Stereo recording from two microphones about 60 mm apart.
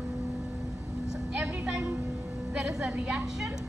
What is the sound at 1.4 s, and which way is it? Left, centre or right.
A woman's voice, centre.